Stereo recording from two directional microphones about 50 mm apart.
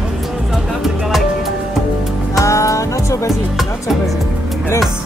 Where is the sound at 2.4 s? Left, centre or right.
Left.